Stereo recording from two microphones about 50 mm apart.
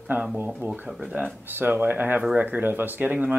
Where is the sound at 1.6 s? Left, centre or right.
Right.